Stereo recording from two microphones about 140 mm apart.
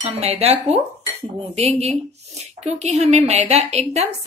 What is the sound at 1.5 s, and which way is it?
Speech, 50° right (ahead or behind).